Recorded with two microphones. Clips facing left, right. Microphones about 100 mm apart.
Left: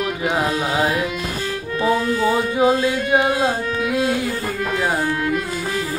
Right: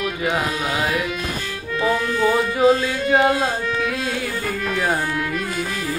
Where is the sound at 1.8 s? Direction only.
20° left (ahead or behind).